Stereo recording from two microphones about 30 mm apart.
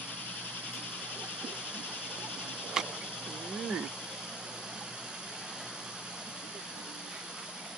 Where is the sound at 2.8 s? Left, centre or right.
Centre.